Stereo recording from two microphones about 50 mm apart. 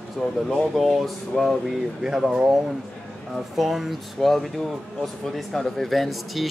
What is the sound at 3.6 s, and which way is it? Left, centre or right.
Speech, centre.